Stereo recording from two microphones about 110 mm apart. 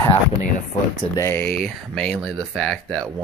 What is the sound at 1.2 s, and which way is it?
Speech, 25° left (ahead or behind).